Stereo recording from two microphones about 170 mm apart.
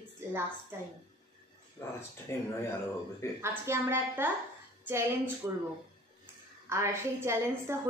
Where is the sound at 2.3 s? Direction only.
15° left (ahead or behind).